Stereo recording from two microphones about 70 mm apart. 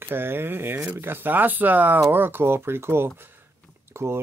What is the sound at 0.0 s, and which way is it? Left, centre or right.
Speech, right.